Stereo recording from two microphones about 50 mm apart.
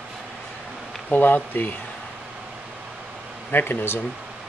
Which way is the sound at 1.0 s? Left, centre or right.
Left.